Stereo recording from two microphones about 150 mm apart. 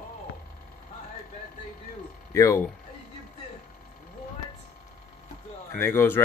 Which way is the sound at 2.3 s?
20° left (ahead or behind).